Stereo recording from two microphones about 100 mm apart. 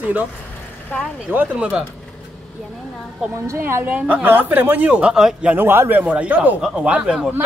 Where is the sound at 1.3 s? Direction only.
15° right (ahead or behind).